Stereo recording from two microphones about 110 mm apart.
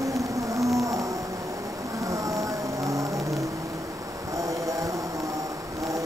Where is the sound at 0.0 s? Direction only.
30° right (ahead or behind).